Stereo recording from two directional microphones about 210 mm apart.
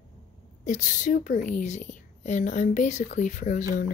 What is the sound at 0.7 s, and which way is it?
A woman's voice, 35° left (ahead or behind).